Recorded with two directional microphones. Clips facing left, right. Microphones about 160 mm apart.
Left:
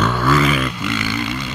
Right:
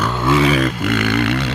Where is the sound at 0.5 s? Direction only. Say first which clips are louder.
Right 4 dB; 45° right (ahead or behind); by 1.5 s 70° right (ahead or behind).